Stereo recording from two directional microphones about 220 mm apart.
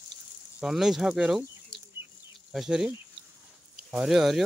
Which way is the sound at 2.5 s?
Centre (ahead or behind).